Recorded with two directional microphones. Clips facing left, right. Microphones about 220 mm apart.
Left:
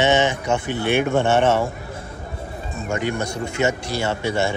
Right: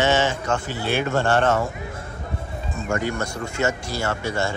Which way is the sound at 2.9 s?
20° left (ahead or behind).